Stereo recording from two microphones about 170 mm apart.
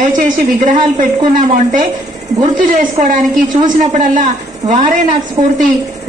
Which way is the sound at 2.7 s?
50° right (ahead or behind).